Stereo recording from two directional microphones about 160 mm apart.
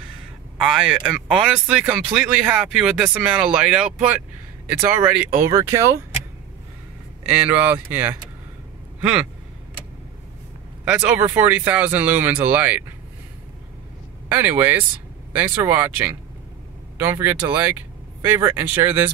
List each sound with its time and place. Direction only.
0.6 s speech: 5° right (ahead or behind); by 5.9 s 20° right (ahead or behind)
7.2 s speech: 10° right (ahead or behind)
10.9 s speech: 10° right (ahead or behind)
14.3 s speech: 10° right (ahead or behind)
16.9 s speech: 15° right (ahead or behind)